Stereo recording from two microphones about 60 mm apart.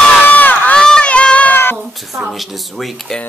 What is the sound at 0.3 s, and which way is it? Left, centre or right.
Crowd, left.